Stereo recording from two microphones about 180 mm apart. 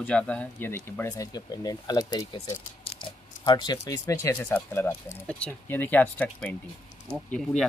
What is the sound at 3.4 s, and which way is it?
Speech, 25° left (ahead or behind).